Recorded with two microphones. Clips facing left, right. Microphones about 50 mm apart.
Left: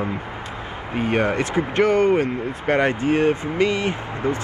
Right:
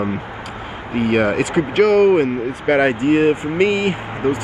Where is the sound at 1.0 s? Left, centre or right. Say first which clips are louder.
Right 4 dB; right.